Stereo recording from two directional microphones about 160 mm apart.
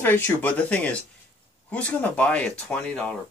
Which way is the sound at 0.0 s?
10° left (ahead or behind).